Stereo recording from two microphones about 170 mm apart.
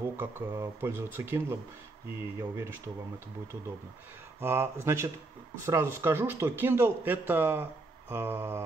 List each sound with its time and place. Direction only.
0.0 s speech: 15° right (ahead or behind)
4.4 s speech: 15° right (ahead or behind)